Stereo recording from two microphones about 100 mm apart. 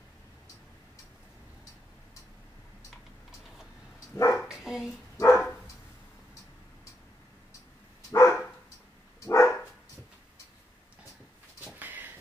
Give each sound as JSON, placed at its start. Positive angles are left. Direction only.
{"t": 4.4, "sound": "bow-wow", "side_deg": -5}
{"t": 5.1, "sound": "dog", "side_deg": 25}
{"t": 8.1, "sound": "dog", "side_deg": 30}
{"t": 11.8, "sound": "a sound", "side_deg": -20}